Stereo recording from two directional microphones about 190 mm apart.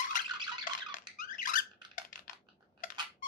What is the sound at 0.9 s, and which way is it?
Squeak, 45° left (ahead or behind).